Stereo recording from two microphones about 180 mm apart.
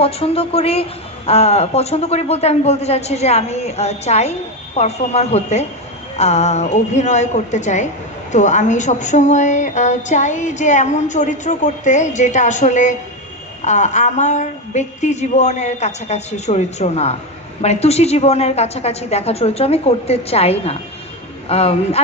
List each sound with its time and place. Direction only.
0.0 s speech: 35° left (ahead or behind)